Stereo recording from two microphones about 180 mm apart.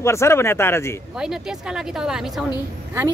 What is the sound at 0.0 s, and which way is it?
Speech, 15° left (ahead or behind).